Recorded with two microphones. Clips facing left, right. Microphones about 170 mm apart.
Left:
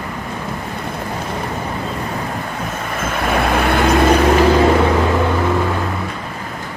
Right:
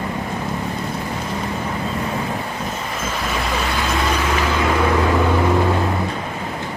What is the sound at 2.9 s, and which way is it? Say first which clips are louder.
Vehicle: left 8 dB; 55° left (ahead or behind).